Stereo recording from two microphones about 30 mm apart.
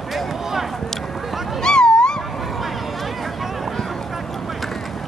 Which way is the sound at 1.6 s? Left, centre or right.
Left.